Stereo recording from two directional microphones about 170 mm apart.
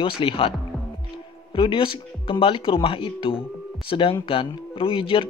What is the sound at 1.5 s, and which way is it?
Speech, 30° left (ahead or behind).